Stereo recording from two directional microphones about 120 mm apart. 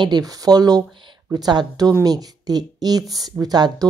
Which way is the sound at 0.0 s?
35° right (ahead or behind).